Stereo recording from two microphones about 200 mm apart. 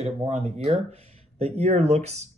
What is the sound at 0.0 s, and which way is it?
Speech, 30° right (ahead or behind).